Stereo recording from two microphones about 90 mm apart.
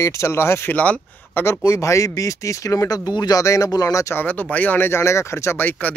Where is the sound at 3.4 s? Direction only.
40° left (ahead or behind).